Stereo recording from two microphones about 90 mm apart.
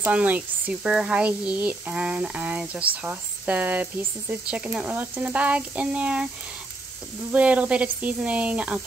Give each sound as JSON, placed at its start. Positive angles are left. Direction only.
{"t": 0.0, "sound": "speech", "side_deg": -15}
{"t": 7.3, "sound": "speech", "side_deg": -15}